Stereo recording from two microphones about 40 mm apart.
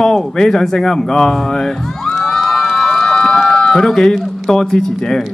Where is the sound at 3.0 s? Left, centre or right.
Centre.